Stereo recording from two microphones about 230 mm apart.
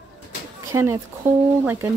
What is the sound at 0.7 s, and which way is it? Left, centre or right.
Speech, centre.